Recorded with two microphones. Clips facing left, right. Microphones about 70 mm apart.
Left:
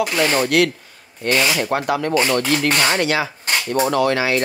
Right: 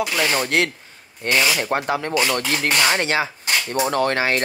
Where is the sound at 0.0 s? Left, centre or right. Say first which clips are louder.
Left 3 dB; left.